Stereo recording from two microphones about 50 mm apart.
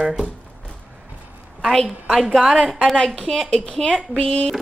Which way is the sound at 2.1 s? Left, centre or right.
Centre.